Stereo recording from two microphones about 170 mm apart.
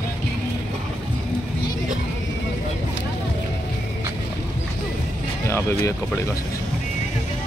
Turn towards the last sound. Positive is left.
turn(degrees=15)  # may be behind; listen again after turning